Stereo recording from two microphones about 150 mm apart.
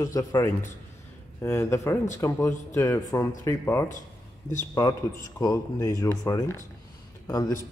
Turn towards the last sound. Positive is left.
turn(degrees=25)  # may be behind; listen again after turning